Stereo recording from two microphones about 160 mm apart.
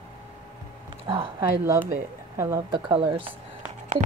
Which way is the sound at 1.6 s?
15° right (ahead or behind).